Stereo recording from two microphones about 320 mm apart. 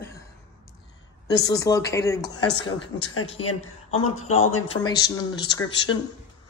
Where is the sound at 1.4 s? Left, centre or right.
Centre.